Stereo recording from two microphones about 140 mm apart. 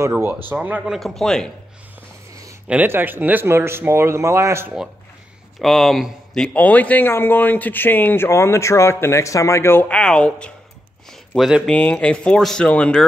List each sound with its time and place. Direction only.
0.0 s a man's voice: 15° right (ahead or behind); by 1.5 s 5° left (ahead or behind)
2.7 s speech: 15° right (ahead or behind)
5.6 s speech: centre (ahead or behind)
11.7 s speech: 10° left (ahead or behind)